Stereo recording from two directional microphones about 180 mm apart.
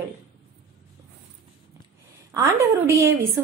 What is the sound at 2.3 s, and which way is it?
Speech, 20° right (ahead or behind).